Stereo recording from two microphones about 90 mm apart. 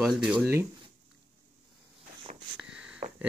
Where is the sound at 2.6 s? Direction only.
10° right (ahead or behind).